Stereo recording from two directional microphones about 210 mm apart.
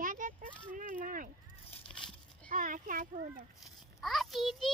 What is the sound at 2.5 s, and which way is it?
Speech, 40° right (ahead or behind).